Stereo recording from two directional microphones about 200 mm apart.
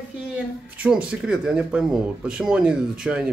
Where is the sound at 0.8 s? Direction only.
5° right (ahead or behind).